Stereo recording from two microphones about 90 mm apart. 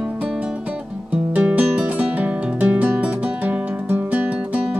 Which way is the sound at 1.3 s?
15° right (ahead or behind).